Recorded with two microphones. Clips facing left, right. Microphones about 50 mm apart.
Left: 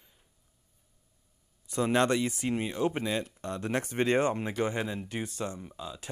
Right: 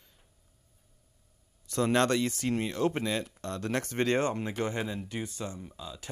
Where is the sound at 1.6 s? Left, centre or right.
Centre.